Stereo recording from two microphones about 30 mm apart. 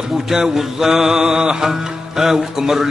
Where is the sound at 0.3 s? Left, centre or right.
Centre.